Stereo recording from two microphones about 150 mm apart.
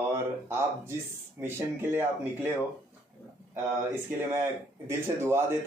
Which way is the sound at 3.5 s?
15° right (ahead or behind).